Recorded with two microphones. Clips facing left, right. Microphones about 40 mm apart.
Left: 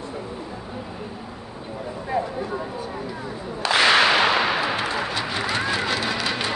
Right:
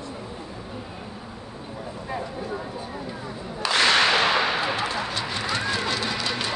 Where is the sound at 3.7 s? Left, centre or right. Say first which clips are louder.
Left 3 dB; centre.